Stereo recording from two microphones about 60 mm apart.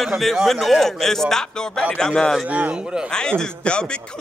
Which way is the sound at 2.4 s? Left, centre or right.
Right.